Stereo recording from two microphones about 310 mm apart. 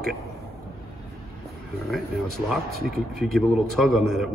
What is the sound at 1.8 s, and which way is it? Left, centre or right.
Speech, centre.